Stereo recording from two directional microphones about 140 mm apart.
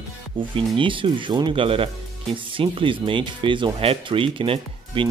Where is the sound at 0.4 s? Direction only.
35° right (ahead or behind).